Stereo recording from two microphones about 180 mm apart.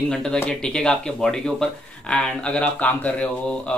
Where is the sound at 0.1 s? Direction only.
5° left (ahead or behind).